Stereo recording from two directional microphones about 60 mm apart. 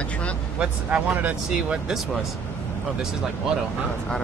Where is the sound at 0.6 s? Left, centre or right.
Right.